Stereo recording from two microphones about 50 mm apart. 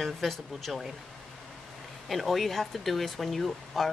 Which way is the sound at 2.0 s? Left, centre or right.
Centre.